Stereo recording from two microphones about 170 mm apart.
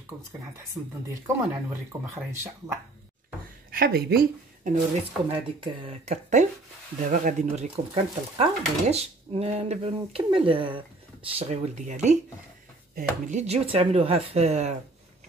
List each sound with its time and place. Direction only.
0.8 s speech: 15° right (ahead or behind)
3.7 s speech: 65° right (ahead or behind)
5.3 s speech: 35° right (ahead or behind)